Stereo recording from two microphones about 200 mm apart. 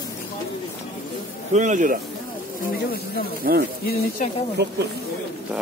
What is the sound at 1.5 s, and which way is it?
Speech, 40° right (ahead or behind).